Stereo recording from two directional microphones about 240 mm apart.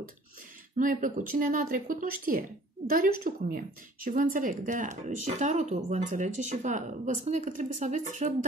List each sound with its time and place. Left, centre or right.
0.7 s a woman's voice: right